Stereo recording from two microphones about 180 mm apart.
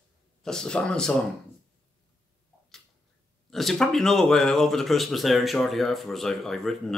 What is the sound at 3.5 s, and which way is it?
Speech, centre (ahead or behind).